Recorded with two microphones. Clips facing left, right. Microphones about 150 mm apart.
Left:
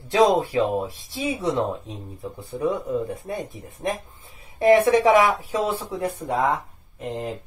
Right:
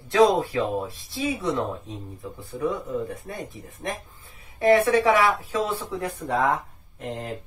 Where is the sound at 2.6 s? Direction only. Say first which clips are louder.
Left 3 dB; 20° left (ahead or behind).